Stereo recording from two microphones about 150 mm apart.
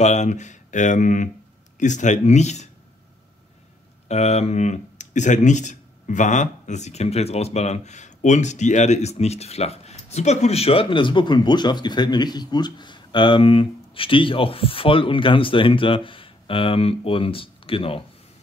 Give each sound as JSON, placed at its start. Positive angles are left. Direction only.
{"t": 0.0, "sound": "speech", "side_deg": 50}
{"t": 4.1, "sound": "speech", "side_deg": 45}